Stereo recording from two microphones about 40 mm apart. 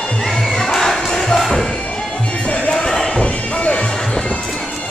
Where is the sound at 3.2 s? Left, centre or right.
Left.